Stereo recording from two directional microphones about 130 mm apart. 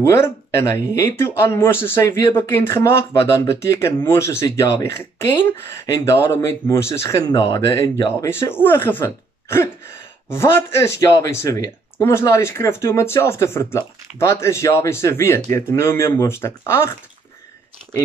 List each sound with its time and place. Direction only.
0.0 s speech: 20° left (ahead or behind)
6.1 s speech: 20° left (ahead or behind)